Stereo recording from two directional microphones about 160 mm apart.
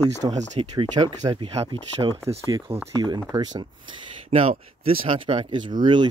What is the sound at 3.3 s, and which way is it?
Speech, 25° right (ahead or behind).